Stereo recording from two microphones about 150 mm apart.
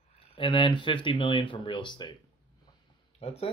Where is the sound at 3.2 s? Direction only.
40° left (ahead or behind).